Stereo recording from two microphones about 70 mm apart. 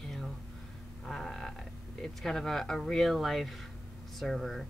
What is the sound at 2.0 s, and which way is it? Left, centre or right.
Speech, centre.